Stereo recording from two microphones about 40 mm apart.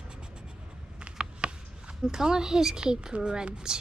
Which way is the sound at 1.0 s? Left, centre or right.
Right.